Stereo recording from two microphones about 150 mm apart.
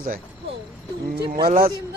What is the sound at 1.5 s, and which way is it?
Speech, 75° right (ahead or behind).